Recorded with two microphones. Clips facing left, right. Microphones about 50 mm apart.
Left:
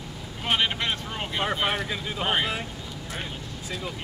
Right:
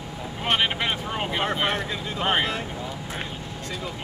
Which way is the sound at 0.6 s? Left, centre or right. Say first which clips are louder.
Right 2 dB; centre.